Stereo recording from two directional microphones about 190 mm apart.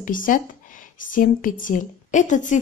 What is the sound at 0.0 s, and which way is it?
A woman's voice, 45° left (ahead or behind).